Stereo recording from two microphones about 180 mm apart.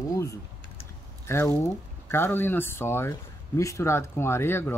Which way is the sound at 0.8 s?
15° left (ahead or behind).